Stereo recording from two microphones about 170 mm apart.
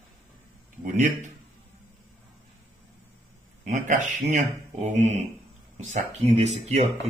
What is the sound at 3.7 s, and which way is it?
Speech, 45° right (ahead or behind).